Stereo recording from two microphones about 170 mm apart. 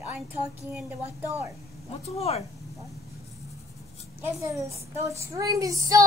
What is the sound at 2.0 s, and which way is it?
Speech, 40° left (ahead or behind).